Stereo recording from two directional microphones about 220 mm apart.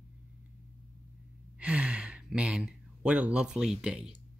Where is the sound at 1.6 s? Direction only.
5° right (ahead or behind).